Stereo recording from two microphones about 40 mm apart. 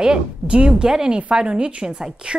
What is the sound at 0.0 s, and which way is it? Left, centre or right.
A woman's voice, right.